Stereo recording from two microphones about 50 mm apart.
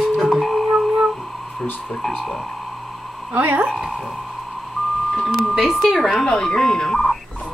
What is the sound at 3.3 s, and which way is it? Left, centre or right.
Speech, right.